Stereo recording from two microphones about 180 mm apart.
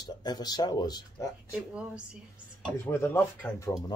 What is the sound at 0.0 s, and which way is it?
Speech, 25° left (ahead or behind).